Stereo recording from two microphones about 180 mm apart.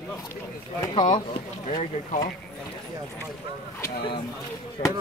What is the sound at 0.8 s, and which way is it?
Speech, 25° left (ahead or behind).